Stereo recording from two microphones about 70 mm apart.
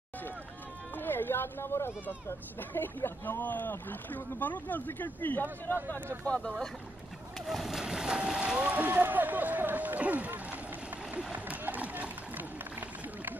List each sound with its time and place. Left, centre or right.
0.9 s speech: left
6.2 s speech: centre
7.4 s boat: centre; by 10.6 s right
11.3 s run: right